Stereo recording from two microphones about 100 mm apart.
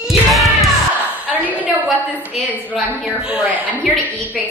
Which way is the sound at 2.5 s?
15° left (ahead or behind).